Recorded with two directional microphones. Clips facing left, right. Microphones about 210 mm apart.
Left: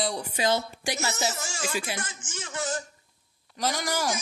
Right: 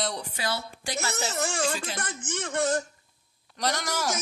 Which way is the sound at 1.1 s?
60° right (ahead or behind).